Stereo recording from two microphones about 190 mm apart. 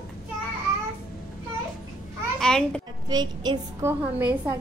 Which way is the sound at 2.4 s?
5° left (ahead or behind).